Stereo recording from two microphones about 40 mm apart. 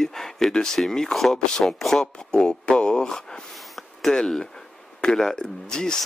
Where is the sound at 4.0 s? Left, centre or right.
Centre.